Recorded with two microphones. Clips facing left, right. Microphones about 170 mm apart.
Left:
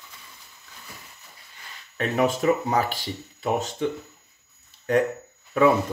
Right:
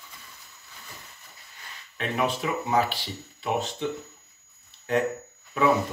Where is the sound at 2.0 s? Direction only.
45° left (ahead or behind).